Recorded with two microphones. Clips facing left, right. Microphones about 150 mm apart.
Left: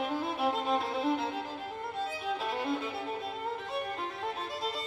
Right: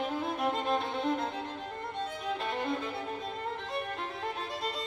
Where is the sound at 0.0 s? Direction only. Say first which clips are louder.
Even; 5° left (ahead or behind).